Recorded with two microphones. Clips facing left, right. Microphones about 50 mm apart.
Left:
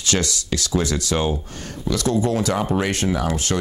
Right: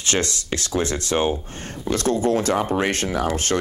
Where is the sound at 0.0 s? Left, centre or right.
Right.